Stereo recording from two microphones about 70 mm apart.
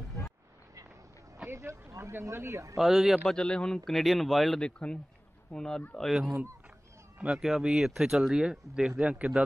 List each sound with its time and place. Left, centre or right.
1.5 s speech: right
2.8 s speech: centre
3.3 s speech: centre
4.6 s speech: centre
7.2 s speech: centre